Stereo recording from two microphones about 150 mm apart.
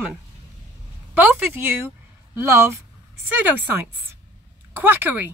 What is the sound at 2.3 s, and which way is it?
Speech, 20° right (ahead or behind).